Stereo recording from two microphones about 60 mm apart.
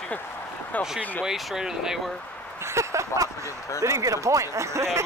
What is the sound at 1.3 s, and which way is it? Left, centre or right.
Speech, centre.